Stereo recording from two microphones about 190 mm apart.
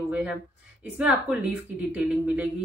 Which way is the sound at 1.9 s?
5° right (ahead or behind).